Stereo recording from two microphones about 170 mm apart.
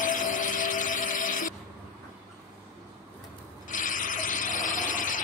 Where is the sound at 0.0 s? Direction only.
50° left (ahead or behind).